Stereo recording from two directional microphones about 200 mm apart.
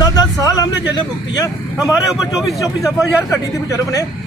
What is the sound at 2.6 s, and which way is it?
Speech, 15° left (ahead or behind).